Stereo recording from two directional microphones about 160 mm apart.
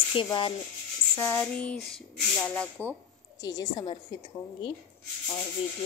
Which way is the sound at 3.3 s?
25° left (ahead or behind).